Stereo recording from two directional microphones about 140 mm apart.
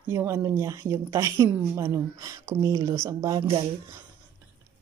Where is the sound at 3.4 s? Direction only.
35° right (ahead or behind).